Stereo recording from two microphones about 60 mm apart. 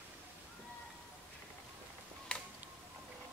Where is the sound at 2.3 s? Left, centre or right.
Centre.